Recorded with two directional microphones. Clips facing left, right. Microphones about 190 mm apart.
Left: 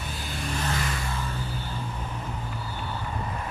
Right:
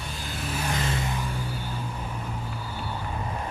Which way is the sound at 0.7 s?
20° right (ahead or behind).